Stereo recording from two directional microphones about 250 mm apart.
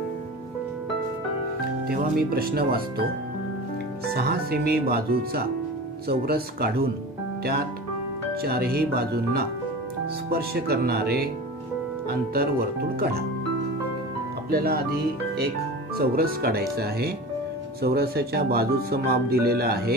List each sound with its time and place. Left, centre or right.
1.9 s speech: right
4.0 s speech: right
8.4 s speech: right
14.5 s speech: right